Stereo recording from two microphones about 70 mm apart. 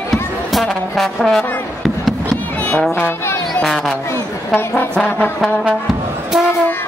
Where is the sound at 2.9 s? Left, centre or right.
Left.